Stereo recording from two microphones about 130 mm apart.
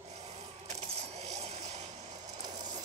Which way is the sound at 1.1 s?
55° right (ahead or behind).